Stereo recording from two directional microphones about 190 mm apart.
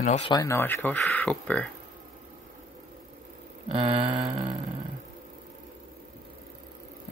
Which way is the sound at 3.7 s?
30° right (ahead or behind).